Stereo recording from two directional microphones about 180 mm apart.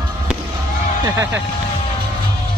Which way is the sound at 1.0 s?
15° right (ahead or behind).